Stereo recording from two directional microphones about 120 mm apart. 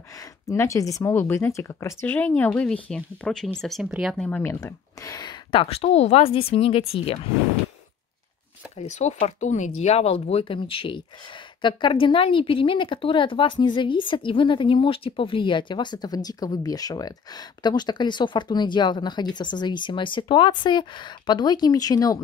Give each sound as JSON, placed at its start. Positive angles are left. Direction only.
{"t": 0.1, "sound": "speech", "side_deg": 25}
{"t": 4.6, "sound": "speech", "side_deg": 30}
{"t": 8.7, "sound": "speech", "side_deg": 75}